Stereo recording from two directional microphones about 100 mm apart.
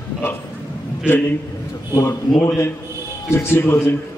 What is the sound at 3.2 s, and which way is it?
Speech, 25° left (ahead or behind).